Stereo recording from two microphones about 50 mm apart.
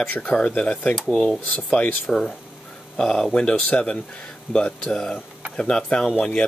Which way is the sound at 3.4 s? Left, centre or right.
Left.